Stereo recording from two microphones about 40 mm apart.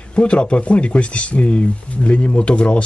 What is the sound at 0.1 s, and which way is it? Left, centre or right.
Speech, left.